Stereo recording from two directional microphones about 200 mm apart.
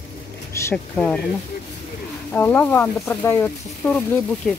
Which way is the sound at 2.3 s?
10° left (ahead or behind).